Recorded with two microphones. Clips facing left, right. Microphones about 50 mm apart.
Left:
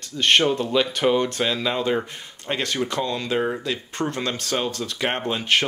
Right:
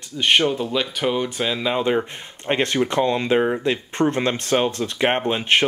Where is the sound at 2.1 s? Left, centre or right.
Right.